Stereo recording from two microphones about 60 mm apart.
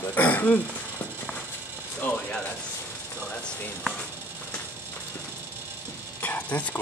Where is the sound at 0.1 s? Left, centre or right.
Left.